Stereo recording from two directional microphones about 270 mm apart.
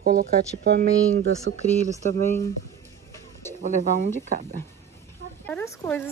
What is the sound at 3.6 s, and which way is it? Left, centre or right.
Speech, right.